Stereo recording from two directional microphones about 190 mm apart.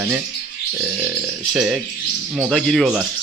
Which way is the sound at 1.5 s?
5° right (ahead or behind).